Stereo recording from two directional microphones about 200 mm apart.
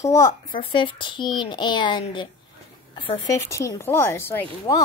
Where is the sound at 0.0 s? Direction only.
15° left (ahead or behind).